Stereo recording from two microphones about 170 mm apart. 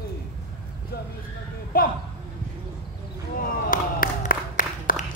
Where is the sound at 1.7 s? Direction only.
60° left (ahead or behind).